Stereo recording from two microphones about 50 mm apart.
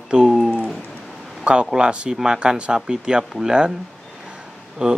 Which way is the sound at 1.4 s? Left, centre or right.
Right.